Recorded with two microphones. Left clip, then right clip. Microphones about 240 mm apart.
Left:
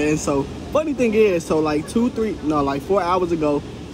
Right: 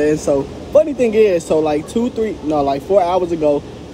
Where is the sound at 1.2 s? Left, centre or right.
Left.